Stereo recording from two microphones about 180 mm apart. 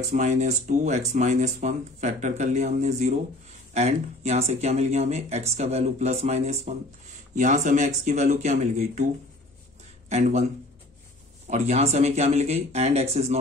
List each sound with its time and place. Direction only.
0.0 s speech: 40° right (ahead or behind)
10.0 s speech: 40° right (ahead or behind)